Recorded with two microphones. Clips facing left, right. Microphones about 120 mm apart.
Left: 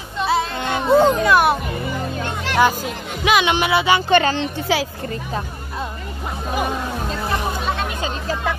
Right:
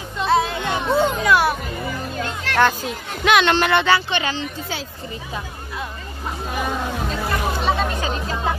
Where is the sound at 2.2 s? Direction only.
15° left (ahead or behind).